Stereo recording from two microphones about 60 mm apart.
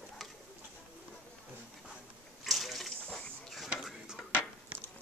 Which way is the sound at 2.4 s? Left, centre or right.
Centre.